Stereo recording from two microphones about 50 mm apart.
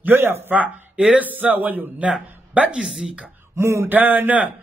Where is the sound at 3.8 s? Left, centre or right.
Right.